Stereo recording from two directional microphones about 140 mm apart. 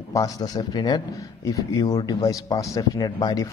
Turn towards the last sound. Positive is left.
turn(degrees=25)  # may be behind; listen again after turning